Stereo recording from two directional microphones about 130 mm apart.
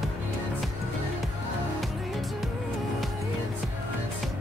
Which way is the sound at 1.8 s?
Centre (ahead or behind).